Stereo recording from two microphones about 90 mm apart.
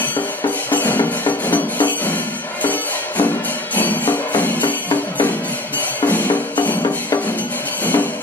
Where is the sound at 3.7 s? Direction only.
20° left (ahead or behind).